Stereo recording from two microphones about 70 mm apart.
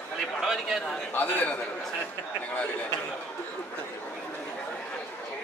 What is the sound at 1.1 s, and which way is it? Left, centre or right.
Speech, left.